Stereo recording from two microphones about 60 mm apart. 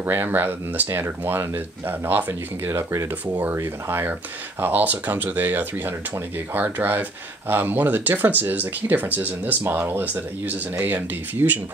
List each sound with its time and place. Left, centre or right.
0.0 s speech: right
4.6 s speech: right